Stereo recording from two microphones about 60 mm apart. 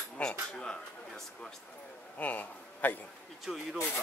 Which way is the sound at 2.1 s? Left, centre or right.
Left.